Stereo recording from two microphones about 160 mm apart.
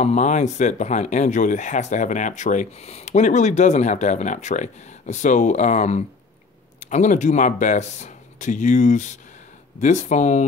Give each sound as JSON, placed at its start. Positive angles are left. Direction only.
{"t": 0.0, "sound": "speech", "side_deg": 45}